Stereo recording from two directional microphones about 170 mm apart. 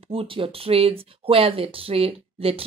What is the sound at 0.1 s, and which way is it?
Speech, 30° right (ahead or behind).